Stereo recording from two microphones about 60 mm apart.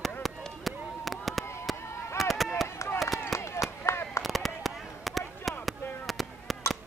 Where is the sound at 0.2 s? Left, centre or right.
Centre.